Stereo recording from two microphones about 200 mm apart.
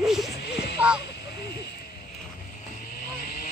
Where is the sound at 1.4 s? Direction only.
50° left (ahead or behind).